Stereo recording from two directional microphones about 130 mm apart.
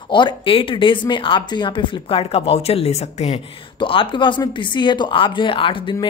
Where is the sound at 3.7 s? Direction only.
40° left (ahead or behind).